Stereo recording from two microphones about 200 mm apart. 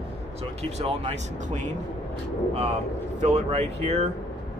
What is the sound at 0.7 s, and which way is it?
Speech, 30° right (ahead or behind).